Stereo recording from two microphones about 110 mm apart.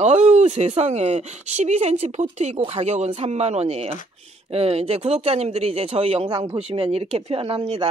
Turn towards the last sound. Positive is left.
turn(degrees=-60)  # may be behind; listen again after turning